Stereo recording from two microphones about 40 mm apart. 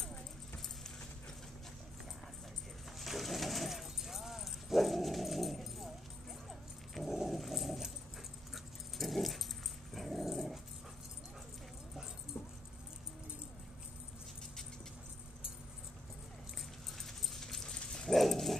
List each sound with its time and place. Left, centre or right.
3.0 s pigeon: centre
6.9 s dog: centre
8.9 s dog: centre
12.4 s keys jangling: left
17.0 s a sound: centre
17.6 s dog: centre
18.1 s dog: centre